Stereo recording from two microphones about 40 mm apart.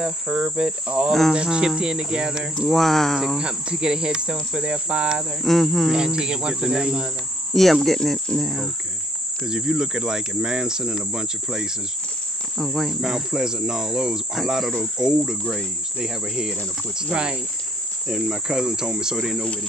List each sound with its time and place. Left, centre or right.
0.0 s cricket: right
2.7 s cricket: centre
3.3 s cricket: right
5.4 s cricket: centre
5.9 s cricket: centre
7.5 s cricket: centre
9.4 s cricket: centre
12.5 s cricket: centre; by 17.4 s right
18.0 s cricket: centre